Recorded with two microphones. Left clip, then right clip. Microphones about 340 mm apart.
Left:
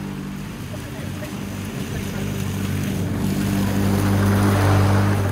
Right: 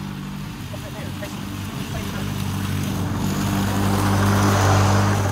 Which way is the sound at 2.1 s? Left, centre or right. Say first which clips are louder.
Even; centre.